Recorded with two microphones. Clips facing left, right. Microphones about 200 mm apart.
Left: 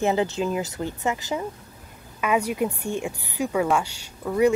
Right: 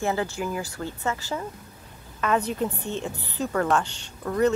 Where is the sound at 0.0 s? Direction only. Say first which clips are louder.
Left 4 dB; 20° left (ahead or behind).